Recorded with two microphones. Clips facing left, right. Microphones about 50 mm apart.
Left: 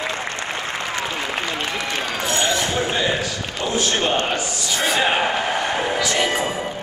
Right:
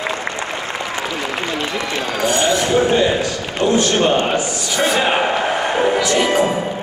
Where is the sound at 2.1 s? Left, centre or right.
Right.